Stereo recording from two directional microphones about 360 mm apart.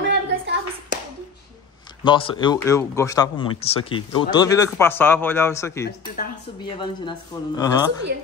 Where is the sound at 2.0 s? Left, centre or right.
Centre.